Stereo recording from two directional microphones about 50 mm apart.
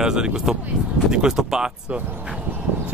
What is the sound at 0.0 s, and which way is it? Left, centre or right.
Speech, centre.